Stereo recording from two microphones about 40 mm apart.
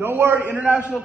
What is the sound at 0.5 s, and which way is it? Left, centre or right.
Speech, right.